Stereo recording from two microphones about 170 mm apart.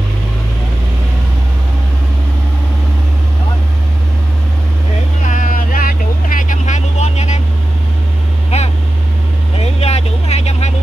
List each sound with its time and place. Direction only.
5.2 s vehicle: 50° left (ahead or behind)
8.5 s vehicle: 40° left (ahead or behind)